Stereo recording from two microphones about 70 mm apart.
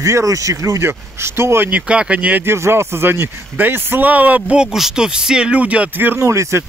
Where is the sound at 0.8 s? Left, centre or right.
Right.